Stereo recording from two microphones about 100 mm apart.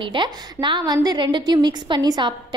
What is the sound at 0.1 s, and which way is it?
A woman's voice, 50° right (ahead or behind).